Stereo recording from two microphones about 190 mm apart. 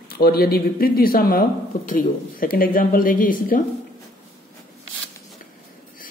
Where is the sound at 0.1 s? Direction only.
55° left (ahead or behind).